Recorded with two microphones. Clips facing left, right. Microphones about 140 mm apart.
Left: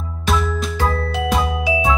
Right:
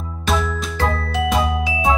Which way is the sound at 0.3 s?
Centre (ahead or behind).